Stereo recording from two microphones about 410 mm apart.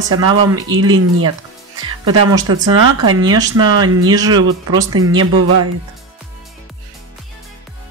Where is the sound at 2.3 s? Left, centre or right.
Centre.